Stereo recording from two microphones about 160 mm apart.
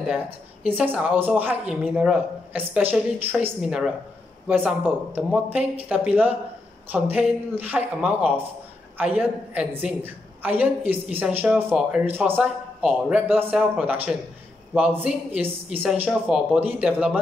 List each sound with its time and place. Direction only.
0.7 s a woman's voice: 10° right (ahead or behind)
16.1 s speech: centre (ahead or behind)
16.5 s a woman's voice: 10° right (ahead or behind)